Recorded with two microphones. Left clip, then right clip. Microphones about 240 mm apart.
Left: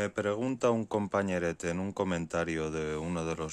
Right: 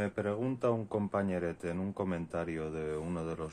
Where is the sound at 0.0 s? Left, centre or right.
Left.